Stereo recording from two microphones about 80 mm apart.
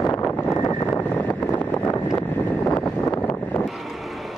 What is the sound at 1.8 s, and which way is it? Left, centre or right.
Vehicle, left.